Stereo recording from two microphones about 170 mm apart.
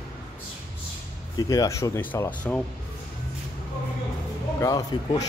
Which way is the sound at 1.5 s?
20° left (ahead or behind).